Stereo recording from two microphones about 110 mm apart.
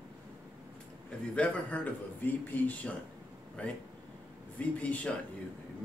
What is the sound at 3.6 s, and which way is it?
Speech, 10° left (ahead or behind).